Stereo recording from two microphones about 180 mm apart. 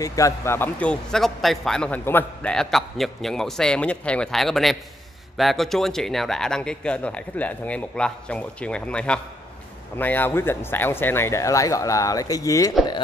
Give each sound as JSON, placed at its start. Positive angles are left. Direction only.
{"t": 0.0, "sound": "a man's voice", "side_deg": 20}